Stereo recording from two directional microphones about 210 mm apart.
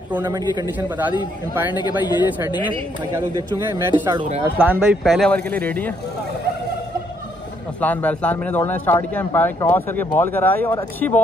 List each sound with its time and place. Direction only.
0.1 s a man's voice: 15° right (ahead or behind)
1.7 s a man's voice: 20° left (ahead or behind)
3.7 s speech: 20° right (ahead or behind)
4.6 s speech: 10° right (ahead or behind); by 5.9 s 5° left (ahead or behind)
7.8 s speech: 5° left (ahead or behind)